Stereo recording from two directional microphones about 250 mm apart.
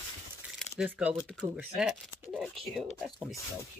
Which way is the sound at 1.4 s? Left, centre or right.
Centre.